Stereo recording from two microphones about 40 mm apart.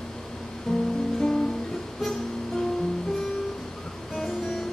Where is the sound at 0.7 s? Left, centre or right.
Centre.